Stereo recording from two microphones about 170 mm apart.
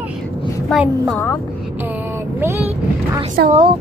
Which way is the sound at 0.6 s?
Centre (ahead or behind).